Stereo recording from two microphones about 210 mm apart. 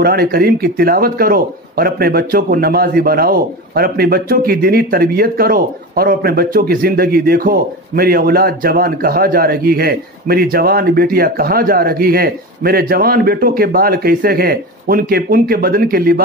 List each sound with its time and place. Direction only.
0.0 s speech: 45° right (ahead or behind)